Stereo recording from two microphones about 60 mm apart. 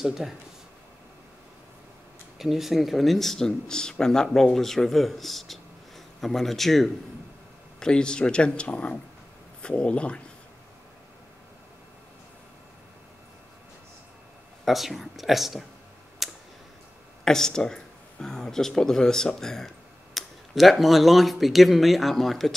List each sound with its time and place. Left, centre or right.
0.0 s speech: centre
2.3 s speech: centre
7.8 s speech: centre
14.6 s speech: centre
16.2 s clicking: centre
17.2 s speech: centre